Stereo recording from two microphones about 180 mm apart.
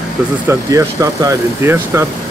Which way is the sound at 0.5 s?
15° right (ahead or behind).